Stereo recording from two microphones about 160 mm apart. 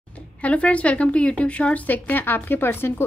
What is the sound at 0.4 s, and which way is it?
A woman's voice, 10° left (ahead or behind).